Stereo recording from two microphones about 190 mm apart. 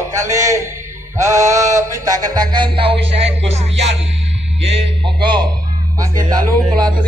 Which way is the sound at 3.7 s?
75° right (ahead or behind).